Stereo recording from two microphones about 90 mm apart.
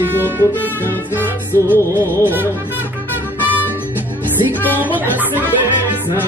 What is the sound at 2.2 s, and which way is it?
Music, 20° right (ahead or behind).